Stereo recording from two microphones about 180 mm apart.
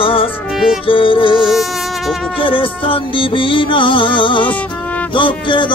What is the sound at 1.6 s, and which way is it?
Insect, centre (ahead or behind).